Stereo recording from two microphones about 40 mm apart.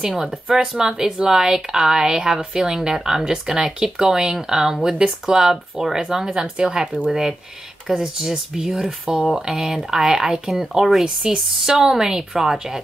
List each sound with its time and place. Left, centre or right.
0.0 s a woman's voice: centre
6.7 s speech: right
7.1 s a woman's voice: centre